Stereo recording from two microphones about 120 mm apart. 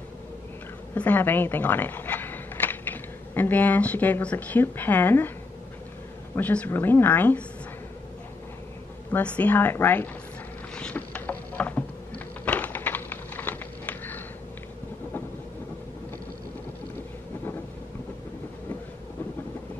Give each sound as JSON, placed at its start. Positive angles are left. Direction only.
{"t": 0.9, "sound": "speech", "side_deg": 15}
{"t": 6.3, "sound": "a woman's voice", "side_deg": 15}
{"t": 9.1, "sound": "a woman's voice", "side_deg": 15}
{"t": 10.7, "sound": "a sound", "side_deg": 10}